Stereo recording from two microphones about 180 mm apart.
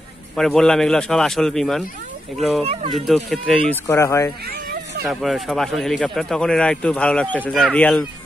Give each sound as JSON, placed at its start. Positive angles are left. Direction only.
{"t": 0.4, "sound": "speech", "side_deg": 5}
{"t": 2.6, "sound": "speech", "side_deg": -35}
{"t": 2.9, "sound": "speech", "side_deg": 0}
{"t": 5.0, "sound": "speech", "side_deg": 0}